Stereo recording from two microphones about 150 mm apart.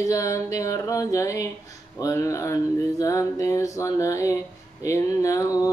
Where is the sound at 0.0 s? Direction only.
20° left (ahead or behind).